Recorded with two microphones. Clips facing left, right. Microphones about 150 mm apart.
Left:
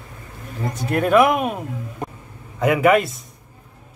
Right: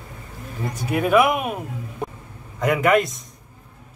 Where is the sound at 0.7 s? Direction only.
Centre (ahead or behind).